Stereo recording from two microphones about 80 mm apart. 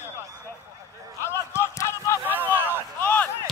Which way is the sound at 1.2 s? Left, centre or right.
Left.